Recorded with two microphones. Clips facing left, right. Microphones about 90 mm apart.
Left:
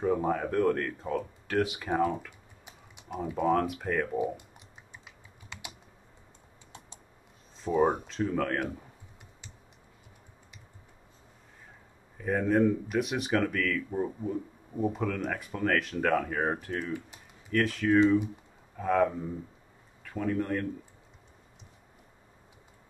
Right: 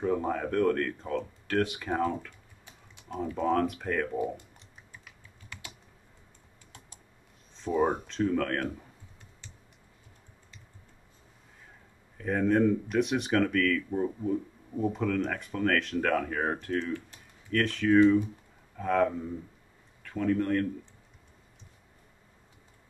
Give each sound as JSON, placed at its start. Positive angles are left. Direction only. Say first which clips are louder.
{"t": 0.0, "sound": "speech", "louder": "left 1 dB", "side_deg": 5}
{"t": 4.4, "sound": "typing", "louder": "left 1 dB", "side_deg": 20}
{"t": 7.6, "sound": "speech", "louder": "left 1 dB", "side_deg": 5}
{"t": 12.2, "sound": "speech", "louder": "even", "side_deg": 5}